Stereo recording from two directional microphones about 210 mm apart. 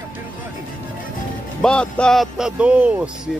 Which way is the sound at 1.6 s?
5° left (ahead or behind).